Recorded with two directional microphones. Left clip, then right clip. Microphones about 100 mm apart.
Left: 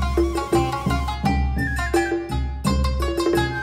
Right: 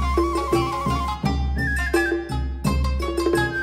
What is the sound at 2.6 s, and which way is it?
Music, 20° right (ahead or behind).